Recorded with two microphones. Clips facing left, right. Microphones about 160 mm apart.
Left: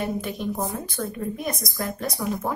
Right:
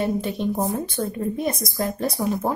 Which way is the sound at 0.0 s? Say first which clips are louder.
Right 4 dB; 30° right (ahead or behind).